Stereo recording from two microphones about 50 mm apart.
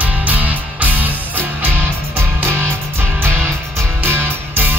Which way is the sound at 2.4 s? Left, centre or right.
Right.